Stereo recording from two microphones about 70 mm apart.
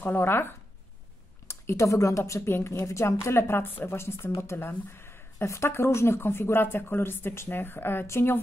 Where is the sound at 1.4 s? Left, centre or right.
Left.